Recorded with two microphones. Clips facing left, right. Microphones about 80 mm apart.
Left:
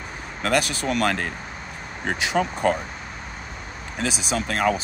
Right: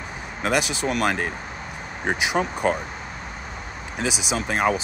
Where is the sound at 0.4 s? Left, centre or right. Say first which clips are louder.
Even; centre.